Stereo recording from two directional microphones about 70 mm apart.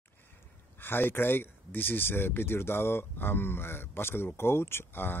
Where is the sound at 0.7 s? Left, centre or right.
Left.